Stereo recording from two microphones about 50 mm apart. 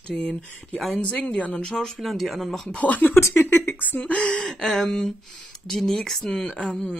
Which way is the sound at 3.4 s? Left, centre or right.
Left.